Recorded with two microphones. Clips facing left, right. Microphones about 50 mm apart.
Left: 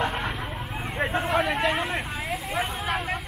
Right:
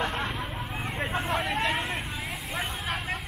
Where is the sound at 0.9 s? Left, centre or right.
Centre.